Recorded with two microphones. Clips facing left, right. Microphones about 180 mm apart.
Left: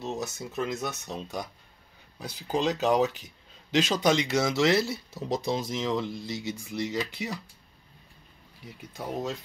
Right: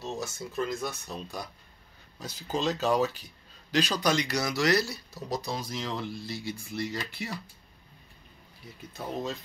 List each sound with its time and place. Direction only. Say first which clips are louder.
0.0 s speech: left 2 dB; 20° left (ahead or behind)
8.6 s speech: left 1 dB; 10° left (ahead or behind)